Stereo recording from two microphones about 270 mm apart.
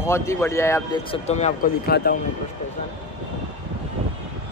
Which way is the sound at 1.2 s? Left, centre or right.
Left.